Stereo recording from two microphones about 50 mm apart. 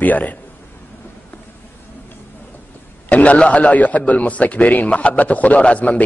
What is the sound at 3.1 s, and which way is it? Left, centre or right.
A man's voice, left.